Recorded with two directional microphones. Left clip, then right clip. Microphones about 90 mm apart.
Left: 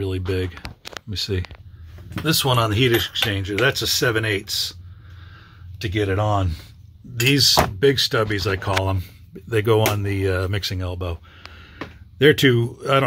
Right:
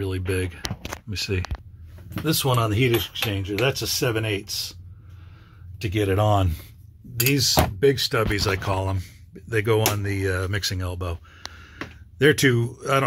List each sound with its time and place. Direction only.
0.0 s speech: 15° left (ahead or behind)
5.8 s speech: 15° right (ahead or behind)
6.1 s speech: 50° right (ahead or behind)
7.2 s speech: 15° left (ahead or behind)
8.8 s speech: 40° left (ahead or behind)
10.4 s speech: 10° left (ahead or behind)